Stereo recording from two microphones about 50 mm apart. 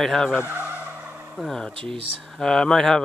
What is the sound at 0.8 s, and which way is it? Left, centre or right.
Vehicle, right.